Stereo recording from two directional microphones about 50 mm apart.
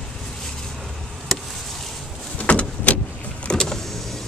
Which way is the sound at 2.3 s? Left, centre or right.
Left.